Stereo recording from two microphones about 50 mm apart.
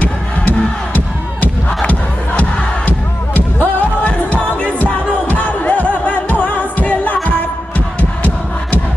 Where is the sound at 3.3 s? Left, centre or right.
Left.